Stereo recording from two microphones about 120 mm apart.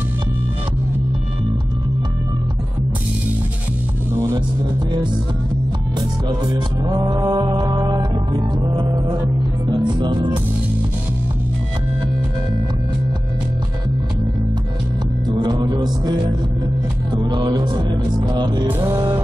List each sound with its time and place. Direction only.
4.1 s music: 25° right (ahead or behind)
5.9 s music: 35° right (ahead or behind)
15.2 s music: 35° right (ahead or behind)